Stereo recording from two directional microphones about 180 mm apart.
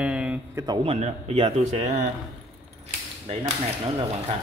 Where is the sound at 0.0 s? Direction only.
5° right (ahead or behind).